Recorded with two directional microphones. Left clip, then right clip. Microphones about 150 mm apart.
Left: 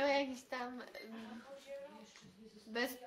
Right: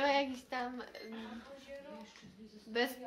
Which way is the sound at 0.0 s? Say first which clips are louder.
Right 3 dB; 15° left (ahead or behind).